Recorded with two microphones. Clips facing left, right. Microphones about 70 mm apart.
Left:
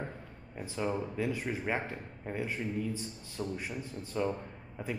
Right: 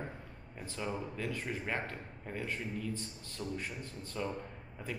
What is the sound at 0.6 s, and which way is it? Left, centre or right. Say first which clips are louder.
Speech: left 5 dB; centre.